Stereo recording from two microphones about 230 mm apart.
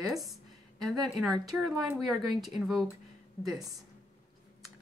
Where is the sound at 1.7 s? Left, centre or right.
Centre.